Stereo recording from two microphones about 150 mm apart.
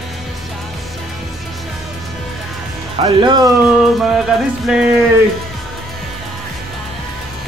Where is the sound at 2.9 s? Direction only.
30° right (ahead or behind).